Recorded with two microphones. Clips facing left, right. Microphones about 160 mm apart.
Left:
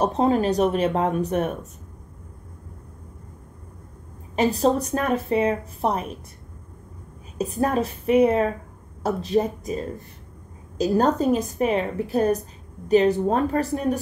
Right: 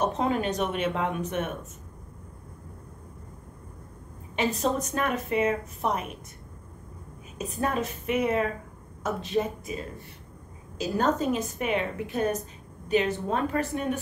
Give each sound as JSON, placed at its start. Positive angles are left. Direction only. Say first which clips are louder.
{"t": 0.0, "sound": "a woman's voice", "louder": "left 6 dB", "side_deg": 35}
{"t": 4.4, "sound": "a woman's voice", "louder": "left 6 dB", "side_deg": 35}
{"t": 7.3, "sound": "a woman's voice", "louder": "left 6 dB", "side_deg": 35}